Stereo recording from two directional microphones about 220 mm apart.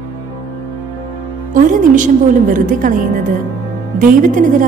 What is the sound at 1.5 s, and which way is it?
A woman's voice, 35° right (ahead or behind).